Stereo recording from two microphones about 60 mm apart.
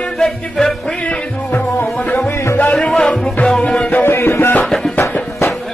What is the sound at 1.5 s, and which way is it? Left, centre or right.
Music, left.